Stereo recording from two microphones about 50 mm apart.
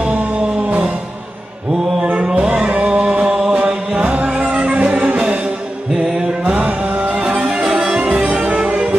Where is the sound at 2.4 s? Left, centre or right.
Centre.